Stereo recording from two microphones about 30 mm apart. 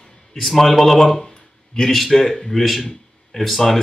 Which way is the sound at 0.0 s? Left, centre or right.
Centre.